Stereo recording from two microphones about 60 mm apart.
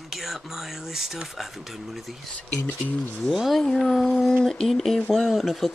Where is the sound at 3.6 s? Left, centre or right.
Centre.